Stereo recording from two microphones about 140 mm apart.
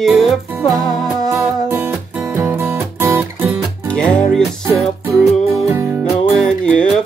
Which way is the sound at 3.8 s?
5° left (ahead or behind).